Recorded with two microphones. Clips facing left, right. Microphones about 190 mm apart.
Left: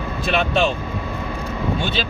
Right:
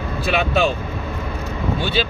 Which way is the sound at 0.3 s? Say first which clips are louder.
Even; 5° right (ahead or behind).